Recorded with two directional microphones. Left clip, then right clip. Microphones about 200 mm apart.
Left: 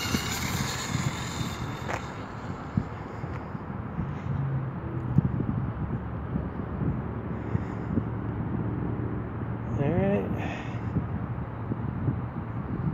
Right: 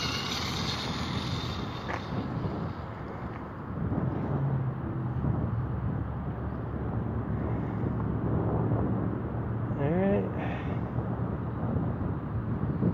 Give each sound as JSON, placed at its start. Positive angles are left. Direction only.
{"t": 0.0, "sound": "vehicle", "side_deg": 15}
{"t": 9.8, "sound": "vehicle", "side_deg": 10}